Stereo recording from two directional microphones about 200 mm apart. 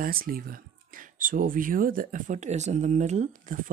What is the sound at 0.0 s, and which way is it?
Speech, 45° right (ahead or behind).